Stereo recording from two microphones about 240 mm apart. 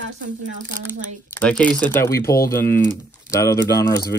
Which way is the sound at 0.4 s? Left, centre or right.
Right.